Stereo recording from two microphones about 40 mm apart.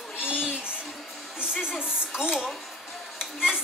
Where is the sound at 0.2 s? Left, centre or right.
Right.